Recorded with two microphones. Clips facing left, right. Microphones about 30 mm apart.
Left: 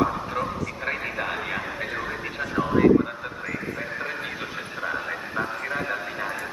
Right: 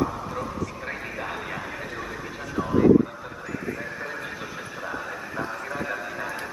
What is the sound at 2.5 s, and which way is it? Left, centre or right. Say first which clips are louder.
Vehicle: left 1 dB; left.